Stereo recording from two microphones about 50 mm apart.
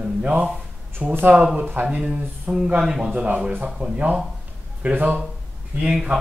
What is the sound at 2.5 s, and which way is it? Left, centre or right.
Speech, centre.